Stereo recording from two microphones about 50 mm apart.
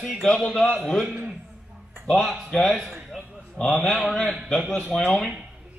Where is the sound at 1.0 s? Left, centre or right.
Right.